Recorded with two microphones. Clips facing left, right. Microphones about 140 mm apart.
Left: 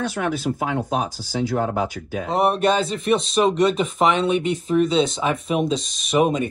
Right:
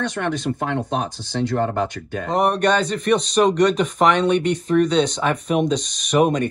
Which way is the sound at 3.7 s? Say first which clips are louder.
Right 2 dB; 40° right (ahead or behind).